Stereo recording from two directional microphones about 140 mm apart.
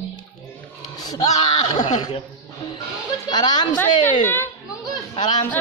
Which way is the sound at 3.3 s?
30° left (ahead or behind).